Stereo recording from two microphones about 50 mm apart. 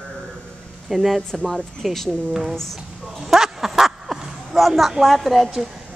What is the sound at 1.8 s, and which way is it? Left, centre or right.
Speech, centre.